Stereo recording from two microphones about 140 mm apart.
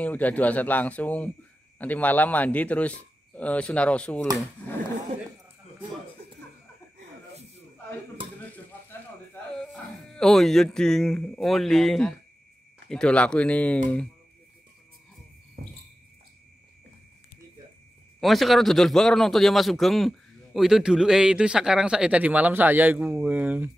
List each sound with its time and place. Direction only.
0.0 s a man's voice: 10° left (ahead or behind)
9.6 s a man's voice: 5° left (ahead or behind)
15.6 s a sound: 90° right
18.2 s a man's voice: centre (ahead or behind)